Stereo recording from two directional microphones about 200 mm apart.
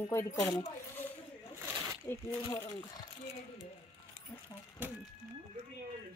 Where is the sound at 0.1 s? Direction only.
10° left (ahead or behind).